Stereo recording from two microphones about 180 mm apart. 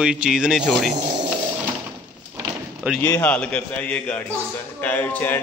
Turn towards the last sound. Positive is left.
turn(degrees=10)  # may be behind; listen again after turning